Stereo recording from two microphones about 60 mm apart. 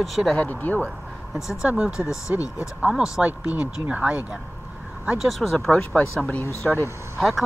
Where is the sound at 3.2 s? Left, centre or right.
Right.